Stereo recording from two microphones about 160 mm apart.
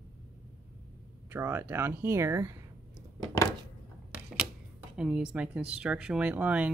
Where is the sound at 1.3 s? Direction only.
15° right (ahead or behind).